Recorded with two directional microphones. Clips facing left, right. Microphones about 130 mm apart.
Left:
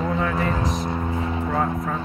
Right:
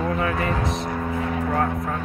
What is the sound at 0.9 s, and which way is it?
Music, 25° left (ahead or behind).